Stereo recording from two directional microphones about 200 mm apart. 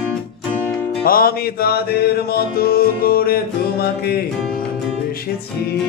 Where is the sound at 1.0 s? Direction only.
45° left (ahead or behind).